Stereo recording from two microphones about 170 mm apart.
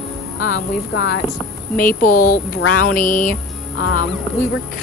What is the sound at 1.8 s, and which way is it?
Speech, 55° left (ahead or behind).